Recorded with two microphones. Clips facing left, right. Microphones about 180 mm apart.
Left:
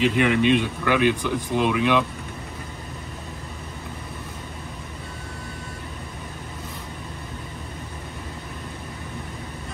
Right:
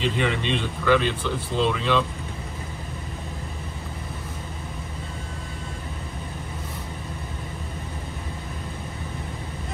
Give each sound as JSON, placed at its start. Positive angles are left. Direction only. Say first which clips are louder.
{"t": 0.0, "sound": "speech", "louder": "left 6 dB", "side_deg": 10}